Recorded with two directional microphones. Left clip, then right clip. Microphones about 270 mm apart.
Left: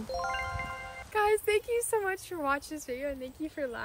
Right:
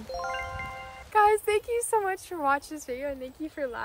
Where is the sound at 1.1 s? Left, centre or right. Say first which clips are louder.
Right 5 dB; centre.